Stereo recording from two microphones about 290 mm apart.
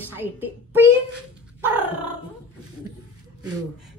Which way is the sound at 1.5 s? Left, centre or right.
Centre.